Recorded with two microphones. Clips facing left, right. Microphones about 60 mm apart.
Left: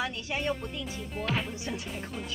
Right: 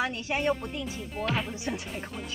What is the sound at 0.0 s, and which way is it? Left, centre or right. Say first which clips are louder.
Speech: right 4 dB; right.